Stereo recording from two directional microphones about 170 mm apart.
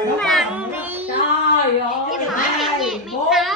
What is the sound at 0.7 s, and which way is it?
Child singing, 10° right (ahead or behind).